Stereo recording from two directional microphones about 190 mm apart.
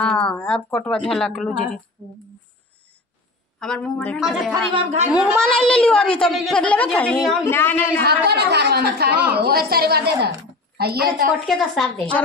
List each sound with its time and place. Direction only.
0.0 s speech: 5° left (ahead or behind)
3.5 s speech: 5° left (ahead or behind)
4.7 s speech: 35° right (ahead or behind)
5.1 s speech: centre (ahead or behind)
8.0 s speech: 60° right (ahead or behind)
11.4 s speech: centre (ahead or behind)